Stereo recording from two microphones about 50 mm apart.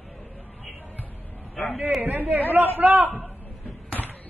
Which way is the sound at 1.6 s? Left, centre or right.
Centre.